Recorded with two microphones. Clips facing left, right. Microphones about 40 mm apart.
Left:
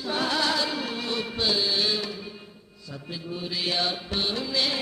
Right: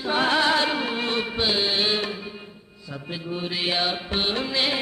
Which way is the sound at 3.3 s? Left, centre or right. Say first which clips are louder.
Right 3 dB; right.